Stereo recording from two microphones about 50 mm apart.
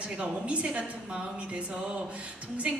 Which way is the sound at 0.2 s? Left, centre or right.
Right.